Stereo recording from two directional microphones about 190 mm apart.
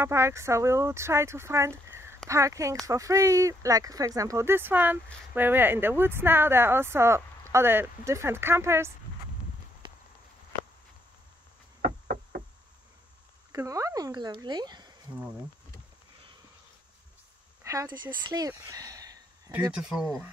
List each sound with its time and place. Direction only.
0.0 s speech: 15° right (ahead or behind)
11.8 s knock: 45° right (ahead or behind)
13.5 s speech: 15° right (ahead or behind)
17.6 s speech: 15° right (ahead or behind)
19.8 s speech: 5° right (ahead or behind)